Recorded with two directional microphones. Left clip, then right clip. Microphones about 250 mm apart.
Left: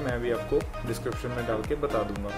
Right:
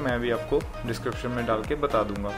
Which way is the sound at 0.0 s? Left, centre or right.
Centre.